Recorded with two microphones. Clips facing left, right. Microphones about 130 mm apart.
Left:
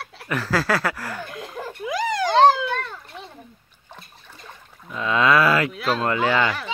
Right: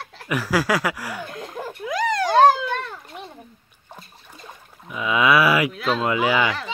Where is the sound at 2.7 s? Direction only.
15° right (ahead or behind).